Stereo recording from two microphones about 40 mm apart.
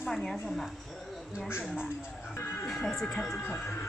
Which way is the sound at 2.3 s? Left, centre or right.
Left.